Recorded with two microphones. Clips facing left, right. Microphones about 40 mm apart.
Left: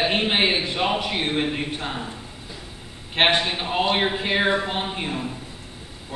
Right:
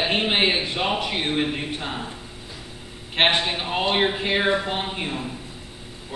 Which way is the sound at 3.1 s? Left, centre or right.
Centre.